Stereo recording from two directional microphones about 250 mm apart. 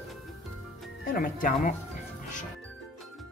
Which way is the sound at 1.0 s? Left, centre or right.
Left.